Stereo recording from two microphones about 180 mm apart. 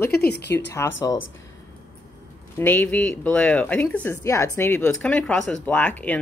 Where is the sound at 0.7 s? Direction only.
15° left (ahead or behind).